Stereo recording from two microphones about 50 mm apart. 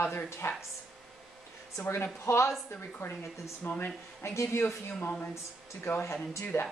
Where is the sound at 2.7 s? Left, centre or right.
Left.